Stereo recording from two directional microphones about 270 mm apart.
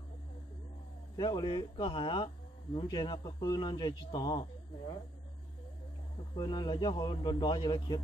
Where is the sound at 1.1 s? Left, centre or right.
Centre.